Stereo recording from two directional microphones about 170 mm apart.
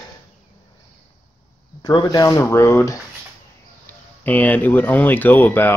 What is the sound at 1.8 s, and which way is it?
Speech, 20° left (ahead or behind).